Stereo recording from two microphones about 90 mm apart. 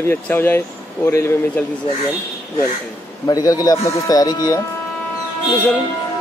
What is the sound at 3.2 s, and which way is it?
Speech, 45° left (ahead or behind).